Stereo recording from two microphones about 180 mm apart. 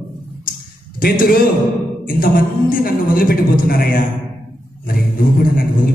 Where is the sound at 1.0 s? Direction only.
55° left (ahead or behind).